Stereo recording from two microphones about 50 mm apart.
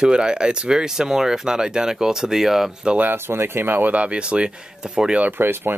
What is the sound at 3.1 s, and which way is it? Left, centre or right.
Speech, right.